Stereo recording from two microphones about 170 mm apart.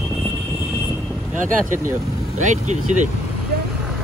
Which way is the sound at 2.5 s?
45° right (ahead or behind).